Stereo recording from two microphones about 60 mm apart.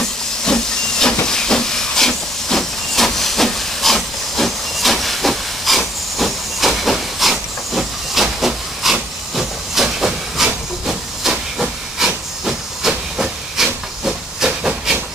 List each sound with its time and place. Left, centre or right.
0.0 s hiss: centre